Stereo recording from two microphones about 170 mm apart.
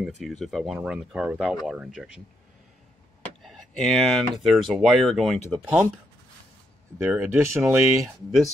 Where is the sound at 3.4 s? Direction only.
Centre (ahead or behind).